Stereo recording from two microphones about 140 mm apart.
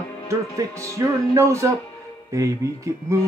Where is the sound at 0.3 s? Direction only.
20° right (ahead or behind).